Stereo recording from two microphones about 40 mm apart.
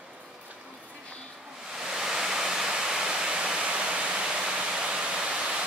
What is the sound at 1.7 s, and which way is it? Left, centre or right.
Waterfall, centre.